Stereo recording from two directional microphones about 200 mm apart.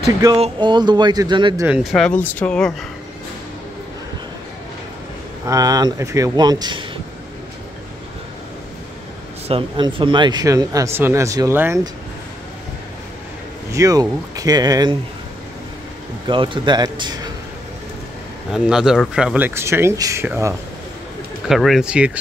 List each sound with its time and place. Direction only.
0.0 s speech: 20° right (ahead or behind)
1.7 s speech: centre (ahead or behind)
5.5 s speech: 20° right (ahead or behind)
9.5 s speech: 25° right (ahead or behind)
13.7 s speech: 15° right (ahead or behind)
16.3 s speech: 25° right (ahead or behind)
18.5 s speech: centre (ahead or behind)
21.5 s speech: centre (ahead or behind)